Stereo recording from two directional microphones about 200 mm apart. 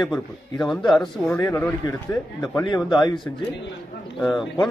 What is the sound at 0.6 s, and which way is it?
A man's voice, centre (ahead or behind).